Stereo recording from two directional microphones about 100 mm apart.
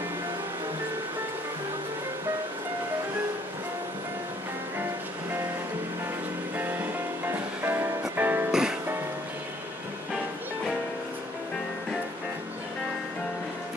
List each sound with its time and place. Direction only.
6.5 s music: 20° right (ahead or behind)
8.5 s music: 5° right (ahead or behind)